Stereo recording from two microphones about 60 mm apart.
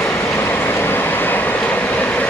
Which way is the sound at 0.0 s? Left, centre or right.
Left.